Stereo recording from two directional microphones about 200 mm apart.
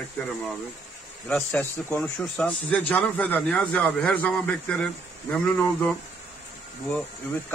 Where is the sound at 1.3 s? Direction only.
10° left (ahead or behind).